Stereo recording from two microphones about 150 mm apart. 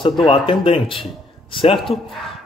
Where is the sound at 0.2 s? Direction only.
35° left (ahead or behind).